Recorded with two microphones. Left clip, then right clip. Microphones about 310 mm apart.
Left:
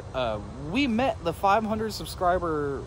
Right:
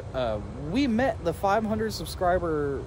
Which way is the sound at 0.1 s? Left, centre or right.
Centre.